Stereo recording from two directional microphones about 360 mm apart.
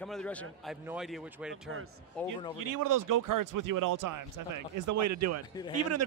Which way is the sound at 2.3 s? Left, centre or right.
Right.